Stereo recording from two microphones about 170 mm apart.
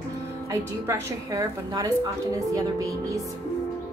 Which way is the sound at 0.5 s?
15° right (ahead or behind).